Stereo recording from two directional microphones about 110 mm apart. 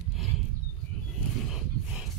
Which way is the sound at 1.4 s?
5° right (ahead or behind).